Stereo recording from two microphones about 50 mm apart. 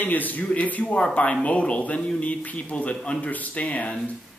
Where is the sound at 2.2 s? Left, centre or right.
Left.